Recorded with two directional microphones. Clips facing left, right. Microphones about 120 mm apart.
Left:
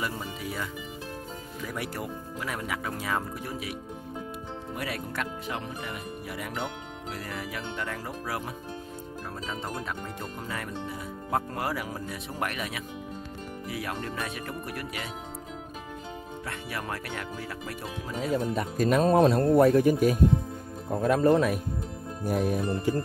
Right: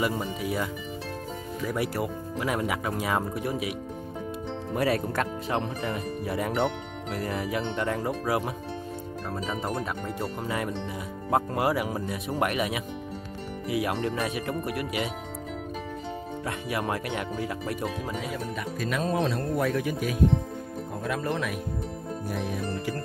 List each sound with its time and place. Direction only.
0.2 s speech: 20° right (ahead or behind)
1.7 s speech: 10° right (ahead or behind)
4.7 s speech: 40° right (ahead or behind)
7.2 s speech: 25° right (ahead or behind)
11.2 s speech: 15° right (ahead or behind)
16.4 s speech: 15° right (ahead or behind)
18.3 s speech: 40° left (ahead or behind)
22.2 s music: 45° left (ahead or behind)
22.7 s music: 25° left (ahead or behind)